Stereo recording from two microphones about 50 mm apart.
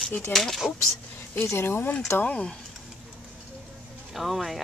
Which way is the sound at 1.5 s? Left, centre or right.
Left.